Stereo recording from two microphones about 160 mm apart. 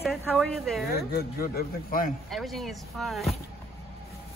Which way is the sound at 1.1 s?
75° left (ahead or behind).